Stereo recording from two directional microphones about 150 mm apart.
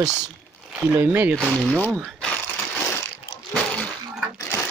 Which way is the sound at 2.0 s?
5° left (ahead or behind).